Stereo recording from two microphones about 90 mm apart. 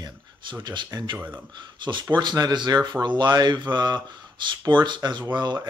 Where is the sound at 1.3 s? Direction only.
55° right (ahead or behind).